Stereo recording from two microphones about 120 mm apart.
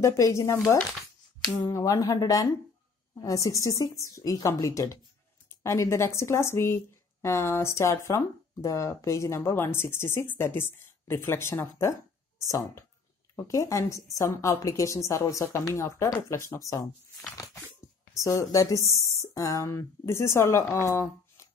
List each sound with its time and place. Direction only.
0.0 s speech: 25° left (ahead or behind)
18.1 s speech: 25° left (ahead or behind)